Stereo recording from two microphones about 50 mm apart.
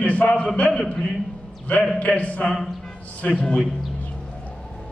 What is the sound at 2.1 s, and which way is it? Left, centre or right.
Speech, left.